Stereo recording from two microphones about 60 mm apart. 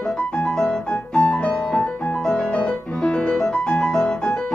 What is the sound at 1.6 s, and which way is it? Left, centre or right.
Music, centre.